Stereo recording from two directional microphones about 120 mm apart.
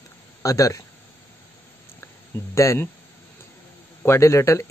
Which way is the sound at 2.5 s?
25° left (ahead or behind).